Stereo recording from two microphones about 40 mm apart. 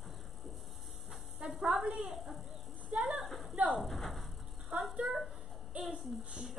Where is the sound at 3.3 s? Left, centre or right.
Centre.